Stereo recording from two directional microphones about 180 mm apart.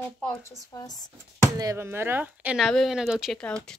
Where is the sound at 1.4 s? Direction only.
15° right (ahead or behind).